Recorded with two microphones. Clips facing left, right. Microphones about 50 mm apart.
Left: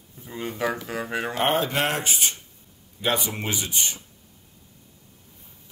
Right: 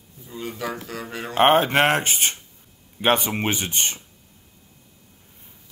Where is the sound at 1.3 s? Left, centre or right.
Right.